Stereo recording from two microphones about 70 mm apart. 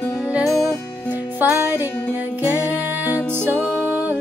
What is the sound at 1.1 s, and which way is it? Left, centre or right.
Music, right.